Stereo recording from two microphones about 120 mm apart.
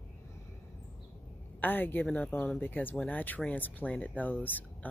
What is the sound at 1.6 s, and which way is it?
Speech, 15° left (ahead or behind).